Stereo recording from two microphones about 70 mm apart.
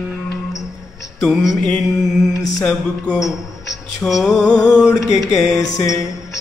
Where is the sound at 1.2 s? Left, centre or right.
Centre.